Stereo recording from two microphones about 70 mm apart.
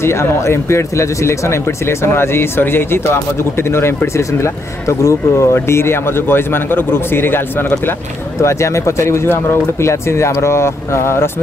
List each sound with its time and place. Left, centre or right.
0.0 s speech: left
8.4 s speech: left